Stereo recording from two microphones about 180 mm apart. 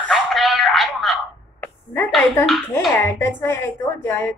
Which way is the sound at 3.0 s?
10° left (ahead or behind).